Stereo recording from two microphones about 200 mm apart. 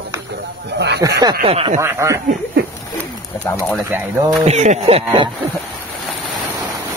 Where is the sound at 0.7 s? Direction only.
55° right (ahead or behind).